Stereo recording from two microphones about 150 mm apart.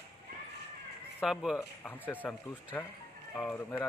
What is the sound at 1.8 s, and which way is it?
Speech, 10° left (ahead or behind).